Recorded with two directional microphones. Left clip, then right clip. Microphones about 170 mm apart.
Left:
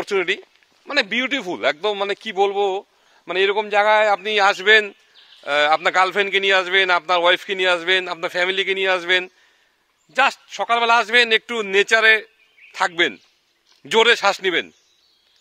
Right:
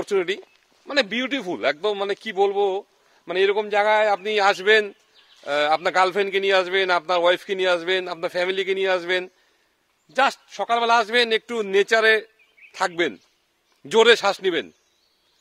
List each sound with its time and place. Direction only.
0.0 s a man's voice: 10° left (ahead or behind)